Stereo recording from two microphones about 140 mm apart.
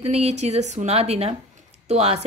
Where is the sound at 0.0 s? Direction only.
50° right (ahead or behind).